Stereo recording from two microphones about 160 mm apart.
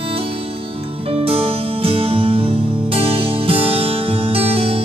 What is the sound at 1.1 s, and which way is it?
Music, 35° right (ahead or behind).